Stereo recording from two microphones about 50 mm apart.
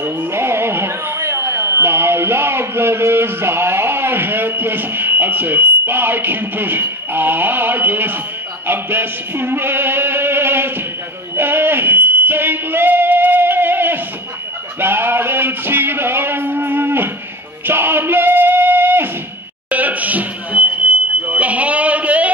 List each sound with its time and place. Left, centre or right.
0.0 s speech: right
8.6 s music: right
11.3 s smoke detector: right
14.8 s a sound: right
17.6 s singing: right
19.7 s a sound: right